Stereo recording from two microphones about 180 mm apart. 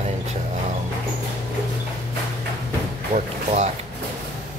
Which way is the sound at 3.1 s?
40° right (ahead or behind).